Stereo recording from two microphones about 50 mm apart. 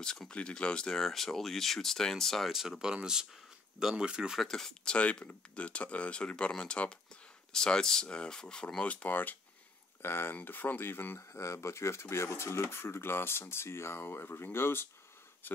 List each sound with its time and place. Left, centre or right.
0.3 s speech: left
2.5 s speech: centre
4.4 s speech: centre
4.9 s speech: left
10.0 s speech: left
11.1 s speech: left
15.4 s speech: left